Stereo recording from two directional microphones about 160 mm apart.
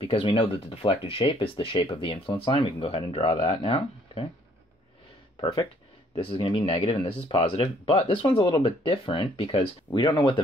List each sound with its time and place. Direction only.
0.0 s speech: 35° left (ahead or behind)
6.1 s speech: 35° left (ahead or behind)
9.8 s speech: 20° left (ahead or behind)